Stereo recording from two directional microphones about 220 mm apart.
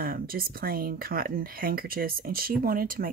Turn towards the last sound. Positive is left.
turn(degrees=-40)  # may be behind; listen again after turning